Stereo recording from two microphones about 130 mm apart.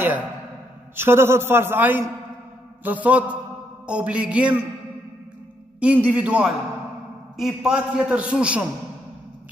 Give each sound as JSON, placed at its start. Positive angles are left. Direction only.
{"t": 0.9, "sound": "a man's voice", "side_deg": -20}
{"t": 5.8, "sound": "a man's voice", "side_deg": -10}